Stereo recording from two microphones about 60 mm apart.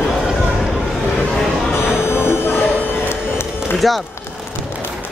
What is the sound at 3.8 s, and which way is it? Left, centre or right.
Speech, centre.